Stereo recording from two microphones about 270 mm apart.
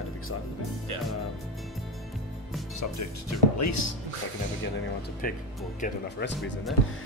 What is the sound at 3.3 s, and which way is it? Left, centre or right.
Speech, left.